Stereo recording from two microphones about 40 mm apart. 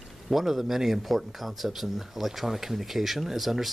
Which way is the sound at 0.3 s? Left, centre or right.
Centre.